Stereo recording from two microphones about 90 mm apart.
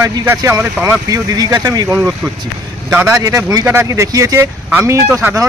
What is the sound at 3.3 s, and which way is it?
Speech, 35° right (ahead or behind).